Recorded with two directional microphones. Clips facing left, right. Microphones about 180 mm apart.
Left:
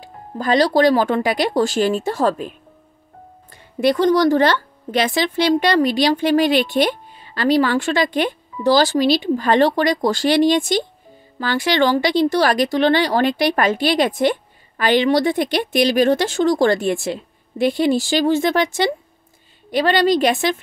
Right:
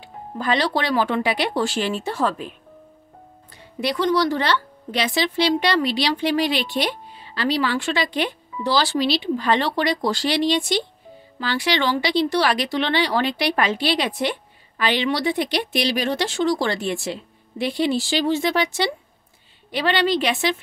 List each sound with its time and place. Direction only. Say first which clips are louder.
0.0 s speech: left 3 dB; 40° left (ahead or behind)
3.8 s speech: left 6 dB; 45° left (ahead or behind)